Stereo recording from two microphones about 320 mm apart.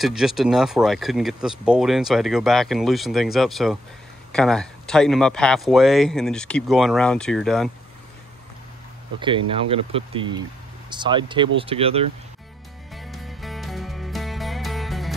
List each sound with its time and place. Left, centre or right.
0.0 s speech: centre
9.2 s speech: centre
12.9 s music: centre